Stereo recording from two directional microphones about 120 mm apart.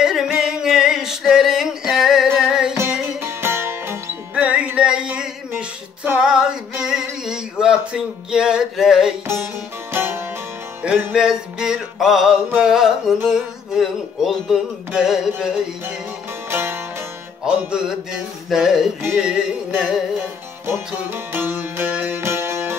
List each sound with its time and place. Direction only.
0.0 s music: 5° right (ahead or behind)
2.8 s music: 20° right (ahead or behind); by 9.1 s 5° right (ahead or behind)
9.9 s music: 20° right (ahead or behind); by 15.5 s 5° right (ahead or behind)
16.4 s music: 20° right (ahead or behind)
17.5 s music: 5° right (ahead or behind)
20.6 s music: 20° right (ahead or behind)